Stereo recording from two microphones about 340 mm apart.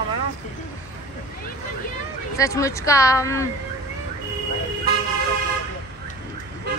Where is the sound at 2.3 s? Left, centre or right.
Centre.